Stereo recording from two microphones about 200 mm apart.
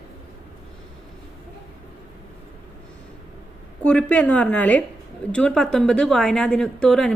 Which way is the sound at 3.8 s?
5° left (ahead or behind).